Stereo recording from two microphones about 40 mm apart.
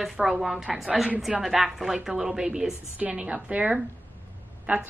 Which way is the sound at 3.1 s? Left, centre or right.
Right.